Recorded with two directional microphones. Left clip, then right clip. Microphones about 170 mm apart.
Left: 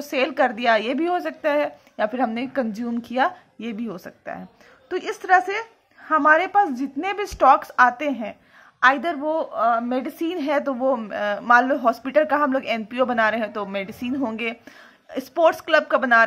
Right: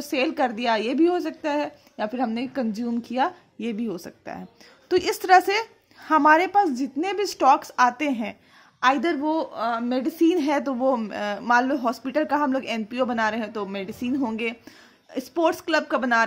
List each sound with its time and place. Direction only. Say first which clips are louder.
0.1 s a woman's voice: left 3 dB; 40° right (ahead or behind)
4.8 s speech: right 3 dB; 65° right (ahead or behind); by 8.4 s 45° right (ahead or behind)
9.0 s speech: left 1 dB; 20° right (ahead or behind)
10.1 s a woman's voice: right 4 dB; 40° right (ahead or behind)